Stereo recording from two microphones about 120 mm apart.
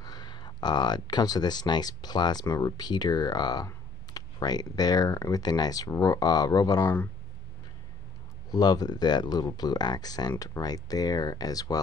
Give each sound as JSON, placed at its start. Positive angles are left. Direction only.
{"t": 0.0, "sound": "speech", "side_deg": 35}
{"t": 8.5, "sound": "speech", "side_deg": 35}